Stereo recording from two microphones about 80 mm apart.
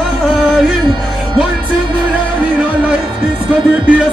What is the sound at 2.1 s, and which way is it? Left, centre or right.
Music, centre.